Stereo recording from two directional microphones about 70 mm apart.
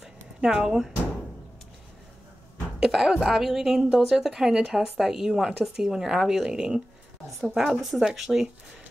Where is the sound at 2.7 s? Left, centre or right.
Centre.